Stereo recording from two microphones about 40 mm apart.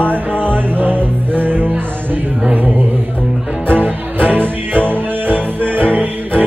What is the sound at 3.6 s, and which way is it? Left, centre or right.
Music, right.